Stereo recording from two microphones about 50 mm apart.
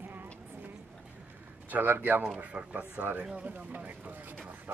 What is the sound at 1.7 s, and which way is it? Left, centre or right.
Speech, right.